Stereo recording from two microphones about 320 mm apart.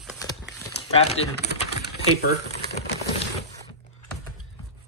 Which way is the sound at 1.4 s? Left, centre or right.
Left.